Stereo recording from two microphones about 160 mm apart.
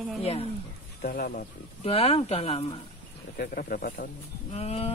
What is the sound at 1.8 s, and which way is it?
Speech, 40° left (ahead or behind).